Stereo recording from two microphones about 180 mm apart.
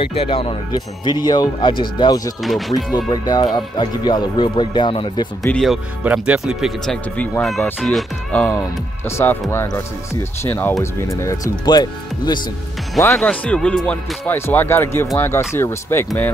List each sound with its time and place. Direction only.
0.0 s speech: 30° left (ahead or behind)
5.5 s speech: centre (ahead or behind); by 12.4 s 20° left (ahead or behind)
13.1 s speech: 5° left (ahead or behind)